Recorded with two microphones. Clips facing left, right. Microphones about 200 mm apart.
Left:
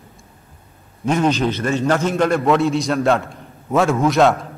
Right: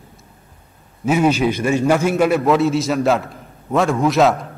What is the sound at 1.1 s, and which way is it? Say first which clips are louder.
A man's voice: right 2 dB; 10° right (ahead or behind).